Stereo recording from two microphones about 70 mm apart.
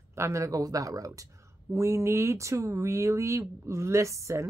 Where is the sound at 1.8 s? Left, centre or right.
Right.